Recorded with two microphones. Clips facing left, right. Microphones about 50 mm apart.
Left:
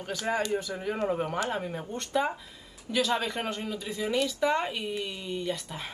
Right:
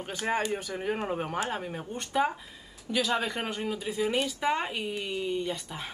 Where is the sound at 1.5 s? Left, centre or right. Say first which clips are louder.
Left 2 dB; centre.